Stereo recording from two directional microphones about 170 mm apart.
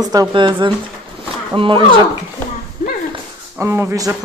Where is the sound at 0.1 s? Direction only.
25° right (ahead or behind).